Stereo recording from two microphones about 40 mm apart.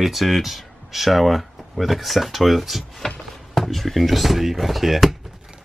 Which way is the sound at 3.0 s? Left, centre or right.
Centre.